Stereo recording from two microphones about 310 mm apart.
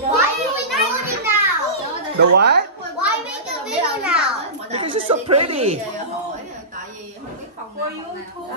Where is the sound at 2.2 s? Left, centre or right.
Right.